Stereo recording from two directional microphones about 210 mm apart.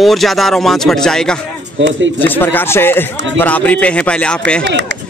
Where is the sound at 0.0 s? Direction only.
Centre (ahead or behind).